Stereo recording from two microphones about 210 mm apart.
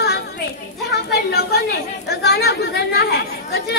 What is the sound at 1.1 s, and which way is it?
A woman's voice, 50° left (ahead or behind).